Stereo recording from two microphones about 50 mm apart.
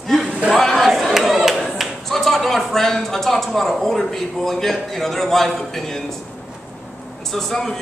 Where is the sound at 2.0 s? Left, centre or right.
Centre.